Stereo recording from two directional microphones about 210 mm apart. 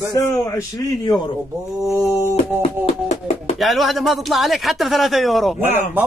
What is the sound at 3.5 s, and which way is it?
A man's voice, centre (ahead or behind).